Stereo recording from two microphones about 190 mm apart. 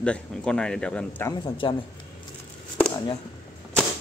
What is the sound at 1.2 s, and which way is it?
Speech, 25° left (ahead or behind).